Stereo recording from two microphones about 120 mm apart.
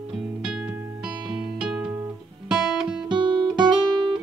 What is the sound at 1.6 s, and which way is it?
Music, 5° right (ahead or behind).